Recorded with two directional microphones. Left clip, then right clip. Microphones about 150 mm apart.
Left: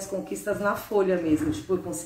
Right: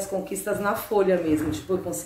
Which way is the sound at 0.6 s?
25° right (ahead or behind).